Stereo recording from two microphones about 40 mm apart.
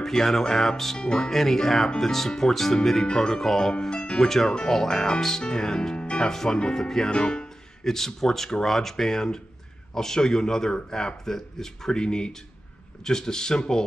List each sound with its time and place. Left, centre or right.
0.0 s speech: centre
0.9 s speech: centre
7.8 s speech: centre